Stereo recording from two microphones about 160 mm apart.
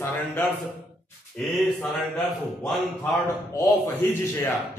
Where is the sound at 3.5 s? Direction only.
15° left (ahead or behind).